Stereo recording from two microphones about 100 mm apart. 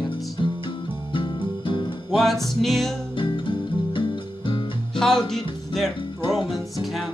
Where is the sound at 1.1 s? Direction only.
55° left (ahead or behind).